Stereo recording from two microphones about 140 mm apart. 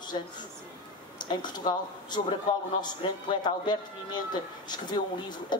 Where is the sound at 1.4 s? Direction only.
30° left (ahead or behind).